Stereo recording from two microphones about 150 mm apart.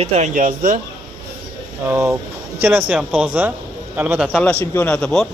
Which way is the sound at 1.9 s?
15° right (ahead or behind).